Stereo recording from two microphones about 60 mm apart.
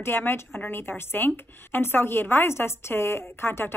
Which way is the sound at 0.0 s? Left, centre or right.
Left.